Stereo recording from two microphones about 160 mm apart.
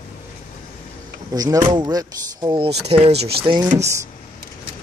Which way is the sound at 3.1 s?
90° right.